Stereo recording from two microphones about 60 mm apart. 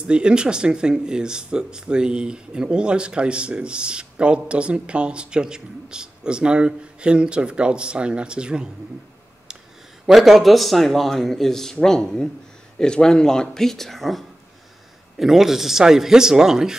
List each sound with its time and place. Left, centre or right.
0.0 s speech: centre
10.0 s a man's voice: centre